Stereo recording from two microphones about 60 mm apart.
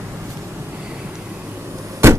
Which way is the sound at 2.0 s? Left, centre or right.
Right.